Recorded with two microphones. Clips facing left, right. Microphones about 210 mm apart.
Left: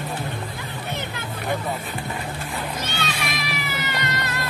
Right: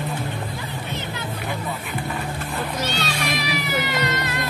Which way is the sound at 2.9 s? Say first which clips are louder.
Right 3 dB; 55° left (ahead or behind).